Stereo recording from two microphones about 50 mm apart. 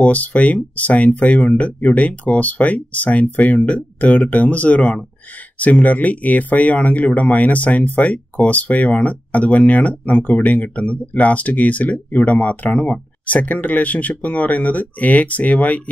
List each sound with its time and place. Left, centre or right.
0.0 s speech: left